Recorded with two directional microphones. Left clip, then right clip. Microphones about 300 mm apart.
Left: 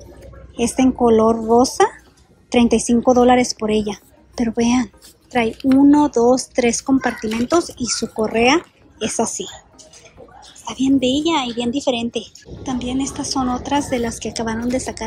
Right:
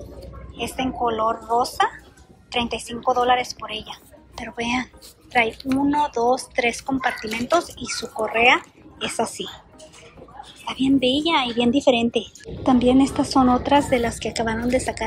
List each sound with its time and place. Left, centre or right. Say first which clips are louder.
0.6 s speech: left 7 dB; centre
10.6 s speech: left 2 dB; centre